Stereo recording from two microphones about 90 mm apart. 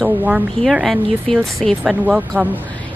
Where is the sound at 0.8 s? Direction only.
5° left (ahead or behind).